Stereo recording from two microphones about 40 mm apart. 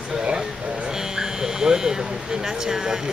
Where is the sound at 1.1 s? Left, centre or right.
Centre.